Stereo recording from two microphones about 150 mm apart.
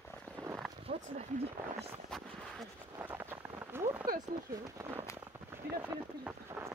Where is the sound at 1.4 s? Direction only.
40° right (ahead or behind).